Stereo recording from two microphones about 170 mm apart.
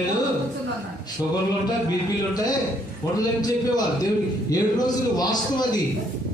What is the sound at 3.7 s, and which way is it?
A man's voice, 20° left (ahead or behind).